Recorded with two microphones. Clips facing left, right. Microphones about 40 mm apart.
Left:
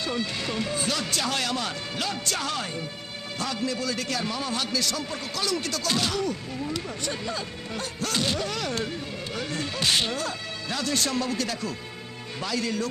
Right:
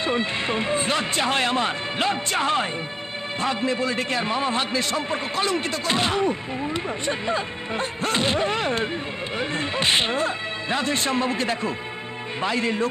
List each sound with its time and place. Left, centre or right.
0.0 s a man's voice: right